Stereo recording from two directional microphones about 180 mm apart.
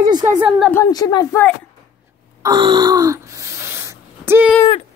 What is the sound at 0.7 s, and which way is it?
Speech, 20° left (ahead or behind).